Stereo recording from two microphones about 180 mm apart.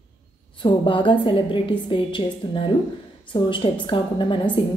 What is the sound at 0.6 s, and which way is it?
A woman's voice, 30° left (ahead or behind).